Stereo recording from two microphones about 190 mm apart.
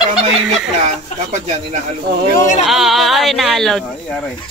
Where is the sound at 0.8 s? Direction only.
40° right (ahead or behind).